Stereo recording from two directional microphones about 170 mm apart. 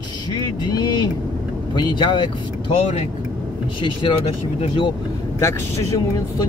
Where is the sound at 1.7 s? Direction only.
25° left (ahead or behind).